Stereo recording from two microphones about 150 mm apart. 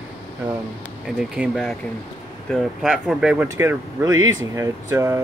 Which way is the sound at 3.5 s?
15° right (ahead or behind).